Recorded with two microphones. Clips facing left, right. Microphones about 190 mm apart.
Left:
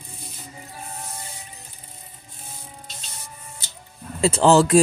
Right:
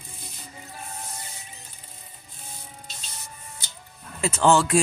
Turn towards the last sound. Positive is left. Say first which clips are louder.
# left 4 dB
turn(degrees=35)  # may be behind; listen again after turning